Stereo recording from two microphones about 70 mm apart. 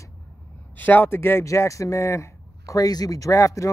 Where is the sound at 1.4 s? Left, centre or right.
Left.